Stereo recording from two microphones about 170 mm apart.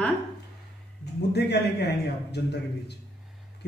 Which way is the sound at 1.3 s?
80° left.